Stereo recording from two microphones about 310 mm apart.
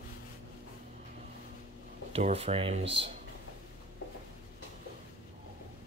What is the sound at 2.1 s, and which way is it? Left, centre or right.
Speech, centre.